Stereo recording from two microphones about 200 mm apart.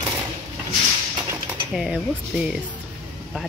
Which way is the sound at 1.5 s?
5° right (ahead or behind).